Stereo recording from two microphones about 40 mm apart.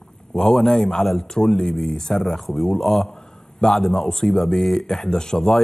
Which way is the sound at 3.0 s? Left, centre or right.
Centre.